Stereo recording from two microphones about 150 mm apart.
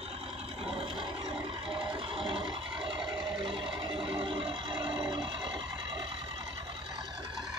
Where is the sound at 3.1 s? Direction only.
5° right (ahead or behind).